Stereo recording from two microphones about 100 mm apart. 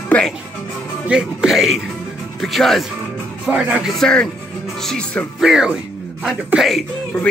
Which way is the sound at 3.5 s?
10° right (ahead or behind).